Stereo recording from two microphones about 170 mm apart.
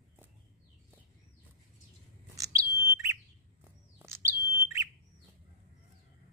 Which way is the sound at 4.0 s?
15° right (ahead or behind).